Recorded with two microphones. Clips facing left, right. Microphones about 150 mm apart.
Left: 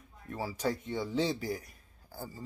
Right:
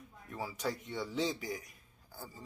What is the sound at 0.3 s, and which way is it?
A man's voice, 35° left (ahead or behind).